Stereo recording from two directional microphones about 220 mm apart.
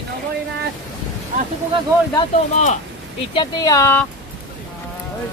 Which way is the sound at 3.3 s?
15° left (ahead or behind).